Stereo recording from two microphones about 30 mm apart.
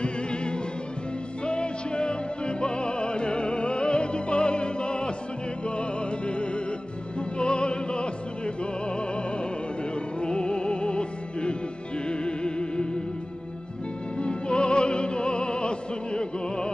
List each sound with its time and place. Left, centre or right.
0.0 s music: left
7.2 s opera: left
8.8 s music: left
14.1 s opera: left